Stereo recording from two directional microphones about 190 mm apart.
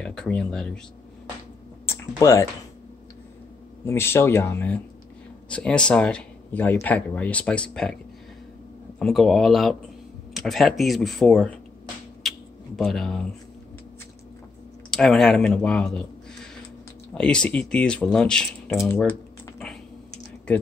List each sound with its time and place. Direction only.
0.0 s speech: 5° left (ahead or behind)
1.9 s speech: 15° left (ahead or behind)
3.8 s speech: 15° left (ahead or behind)
9.0 s speech: centre (ahead or behind)
12.2 s a sound: centre (ahead or behind)
14.9 s speech: centre (ahead or behind)
17.1 s speech: 5° left (ahead or behind)
19.0 s typing: 5° left (ahead or behind)